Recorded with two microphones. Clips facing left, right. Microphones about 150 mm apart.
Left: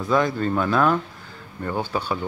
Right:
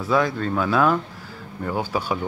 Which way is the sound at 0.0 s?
5° right (ahead or behind).